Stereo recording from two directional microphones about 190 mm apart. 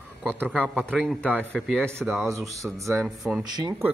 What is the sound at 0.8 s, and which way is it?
Speech, 5° left (ahead or behind).